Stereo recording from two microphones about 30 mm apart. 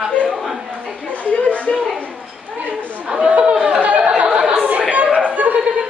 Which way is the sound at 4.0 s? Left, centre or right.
Right.